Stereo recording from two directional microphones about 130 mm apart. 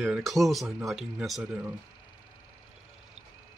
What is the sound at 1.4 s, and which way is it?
Speech, 10° right (ahead or behind).